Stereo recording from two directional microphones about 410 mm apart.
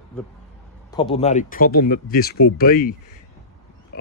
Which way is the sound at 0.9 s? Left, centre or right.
Centre.